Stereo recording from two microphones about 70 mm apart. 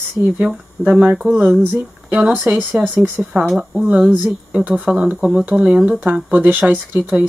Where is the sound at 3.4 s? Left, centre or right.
Centre.